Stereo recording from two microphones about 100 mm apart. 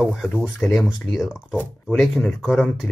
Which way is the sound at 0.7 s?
Centre (ahead or behind).